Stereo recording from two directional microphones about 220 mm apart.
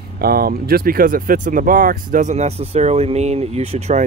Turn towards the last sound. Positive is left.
turn(degrees=-30)  # may be behind; listen again after turning